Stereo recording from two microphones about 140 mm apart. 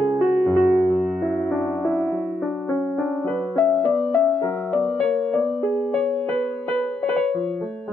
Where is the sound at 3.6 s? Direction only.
15° left (ahead or behind).